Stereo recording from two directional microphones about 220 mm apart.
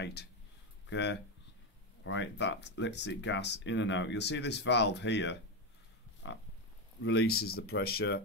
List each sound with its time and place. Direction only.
0.0 s speech: 50° left (ahead or behind)
6.2 s pig: 55° left (ahead or behind)
7.0 s speech: 55° left (ahead or behind)